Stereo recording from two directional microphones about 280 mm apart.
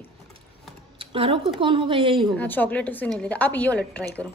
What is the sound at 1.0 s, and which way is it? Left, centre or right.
A woman's voice, centre.